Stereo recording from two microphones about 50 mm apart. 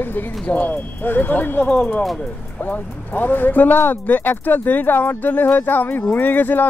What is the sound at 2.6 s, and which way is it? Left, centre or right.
Speech, left.